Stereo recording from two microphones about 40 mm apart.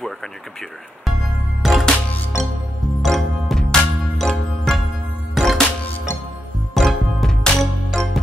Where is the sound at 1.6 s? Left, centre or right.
Centre.